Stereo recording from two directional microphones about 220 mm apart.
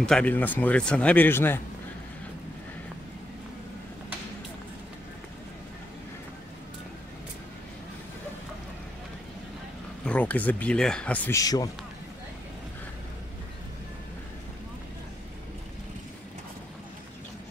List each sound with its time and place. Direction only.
0.0 s speech: 5° left (ahead or behind)
10.0 s speech: 5° left (ahead or behind)